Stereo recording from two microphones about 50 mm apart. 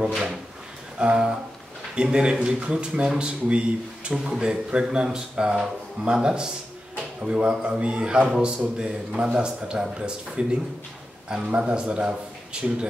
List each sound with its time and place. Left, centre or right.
0.9 s a man's voice: centre